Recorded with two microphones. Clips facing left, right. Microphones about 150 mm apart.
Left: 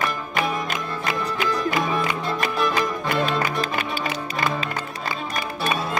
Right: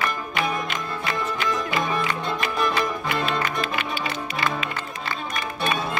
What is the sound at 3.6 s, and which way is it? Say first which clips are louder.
Music: left 1 dB; 40° left (ahead or behind).